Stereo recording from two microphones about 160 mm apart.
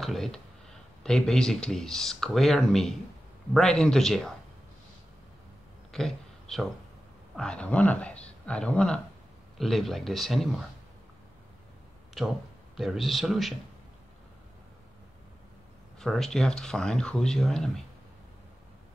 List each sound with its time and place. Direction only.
0.0 s speech: centre (ahead or behind)
5.9 s a sound: centre (ahead or behind)
7.3 s speech: 5° left (ahead or behind)
12.2 s speech: centre (ahead or behind)
16.0 s speech: centre (ahead or behind)